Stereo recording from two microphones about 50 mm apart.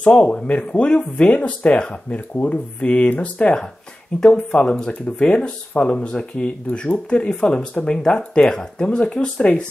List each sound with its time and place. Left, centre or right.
0.0 s speech: left